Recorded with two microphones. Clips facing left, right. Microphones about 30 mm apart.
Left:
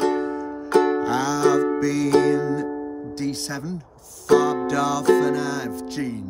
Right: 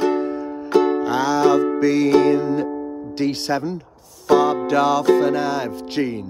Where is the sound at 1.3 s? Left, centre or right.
Right.